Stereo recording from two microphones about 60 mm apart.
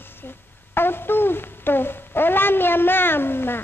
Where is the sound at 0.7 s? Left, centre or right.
Left.